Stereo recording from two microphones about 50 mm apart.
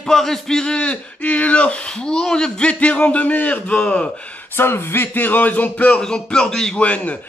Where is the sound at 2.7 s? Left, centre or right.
Left.